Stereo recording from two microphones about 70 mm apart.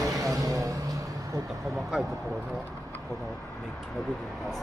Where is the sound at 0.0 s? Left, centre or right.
Right.